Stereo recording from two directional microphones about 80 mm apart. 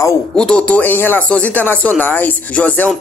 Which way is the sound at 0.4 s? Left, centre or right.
Centre.